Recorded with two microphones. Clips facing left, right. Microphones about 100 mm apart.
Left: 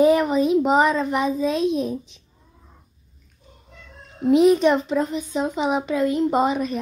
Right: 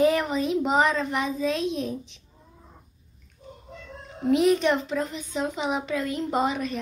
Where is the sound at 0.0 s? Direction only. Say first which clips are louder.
Left 5 dB; 15° left (ahead or behind).